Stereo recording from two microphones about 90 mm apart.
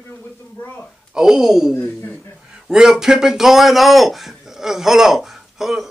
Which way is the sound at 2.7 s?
5° right (ahead or behind).